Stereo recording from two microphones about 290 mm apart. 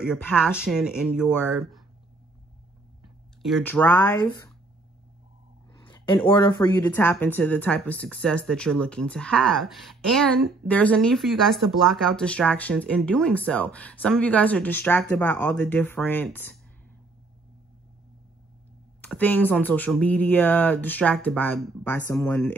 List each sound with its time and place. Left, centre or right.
0.1 s speech: centre
3.4 s speech: centre
5.8 s speech: centre
18.9 s speech: centre